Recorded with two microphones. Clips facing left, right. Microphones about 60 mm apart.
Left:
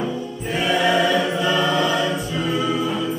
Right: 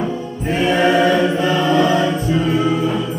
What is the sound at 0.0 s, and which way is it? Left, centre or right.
Music, right.